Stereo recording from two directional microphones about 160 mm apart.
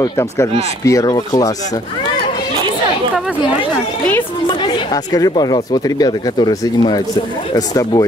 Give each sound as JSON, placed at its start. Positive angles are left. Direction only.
{"t": 0.0, "sound": "speech", "side_deg": 20}
{"t": 4.5, "sound": "speech", "side_deg": 25}